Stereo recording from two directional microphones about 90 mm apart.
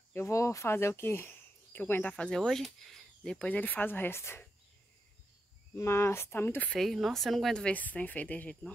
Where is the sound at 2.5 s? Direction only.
Centre (ahead or behind); by 4.4 s 30° left (ahead or behind).